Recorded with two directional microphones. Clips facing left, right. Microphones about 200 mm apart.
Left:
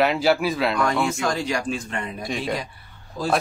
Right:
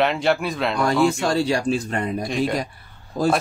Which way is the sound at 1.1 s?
35° right (ahead or behind).